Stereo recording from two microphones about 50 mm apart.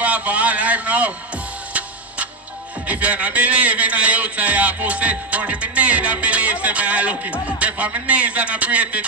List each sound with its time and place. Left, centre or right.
0.0 s a sound: right
1.7 s tick-tock: right
2.9 s music: right